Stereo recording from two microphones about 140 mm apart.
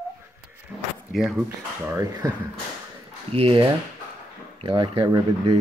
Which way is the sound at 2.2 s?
25° right (ahead or behind).